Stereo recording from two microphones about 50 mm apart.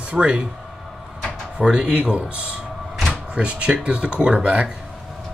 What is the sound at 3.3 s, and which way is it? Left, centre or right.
Speech, right.